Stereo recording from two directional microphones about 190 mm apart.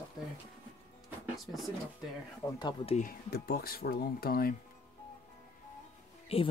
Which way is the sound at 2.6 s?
20° left (ahead or behind).